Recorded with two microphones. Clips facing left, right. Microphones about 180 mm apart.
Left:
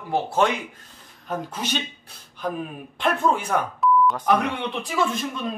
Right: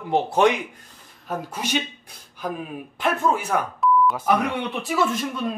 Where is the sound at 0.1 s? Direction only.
15° right (ahead or behind).